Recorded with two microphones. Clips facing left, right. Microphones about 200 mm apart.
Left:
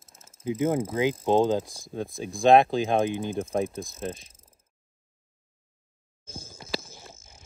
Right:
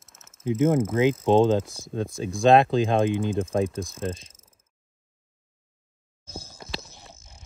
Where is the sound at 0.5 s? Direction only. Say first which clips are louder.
Right 4 dB; centre (ahead or behind).